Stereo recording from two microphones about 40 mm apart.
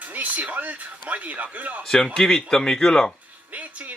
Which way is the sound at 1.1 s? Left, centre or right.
Right.